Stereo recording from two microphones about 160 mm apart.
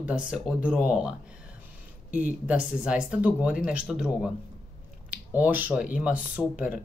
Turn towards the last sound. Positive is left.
turn(degrees=-10)  # may be behind; listen again after turning